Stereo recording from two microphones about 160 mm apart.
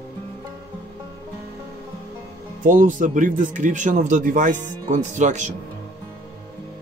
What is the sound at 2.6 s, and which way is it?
Speech, 55° right (ahead or behind).